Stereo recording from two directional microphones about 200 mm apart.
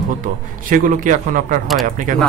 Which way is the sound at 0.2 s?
45° right (ahead or behind).